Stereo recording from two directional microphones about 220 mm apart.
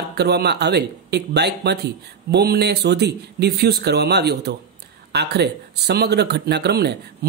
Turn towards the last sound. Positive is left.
turn(degrees=-50)  # may be behind; listen again after turning